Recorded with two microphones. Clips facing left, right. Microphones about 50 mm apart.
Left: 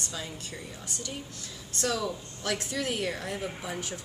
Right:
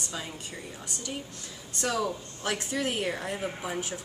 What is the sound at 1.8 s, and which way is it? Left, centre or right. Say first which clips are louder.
A woman's voice: right 1 dB; centre.